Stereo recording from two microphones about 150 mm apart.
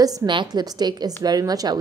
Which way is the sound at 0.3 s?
30° right (ahead or behind).